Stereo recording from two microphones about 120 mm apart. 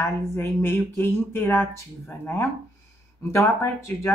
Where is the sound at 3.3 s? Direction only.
25° left (ahead or behind).